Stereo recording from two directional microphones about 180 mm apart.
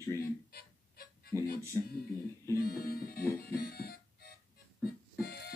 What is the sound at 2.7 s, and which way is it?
Music, 55° left (ahead or behind).